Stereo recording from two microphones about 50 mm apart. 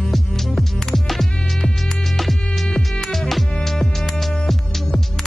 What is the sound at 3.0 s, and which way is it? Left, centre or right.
Music, centre.